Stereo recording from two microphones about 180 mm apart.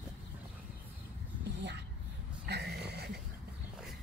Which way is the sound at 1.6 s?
75° right (ahead or behind).